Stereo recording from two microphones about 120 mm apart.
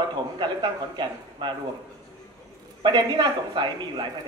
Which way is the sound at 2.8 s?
40° right (ahead or behind).